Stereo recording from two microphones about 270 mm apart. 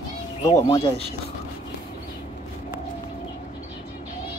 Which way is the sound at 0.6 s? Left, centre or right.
Centre.